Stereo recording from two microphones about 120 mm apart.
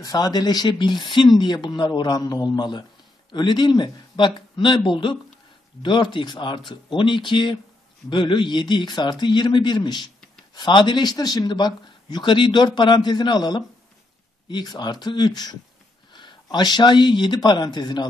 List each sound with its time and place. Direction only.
0.0 s speech: 35° left (ahead or behind)